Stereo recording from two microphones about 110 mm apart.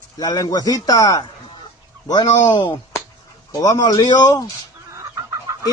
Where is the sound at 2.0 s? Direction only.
45° left (ahead or behind).